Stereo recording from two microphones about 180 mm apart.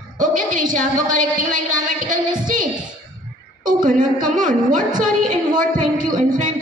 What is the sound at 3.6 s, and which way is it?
A woman's voice, 45° right (ahead or behind).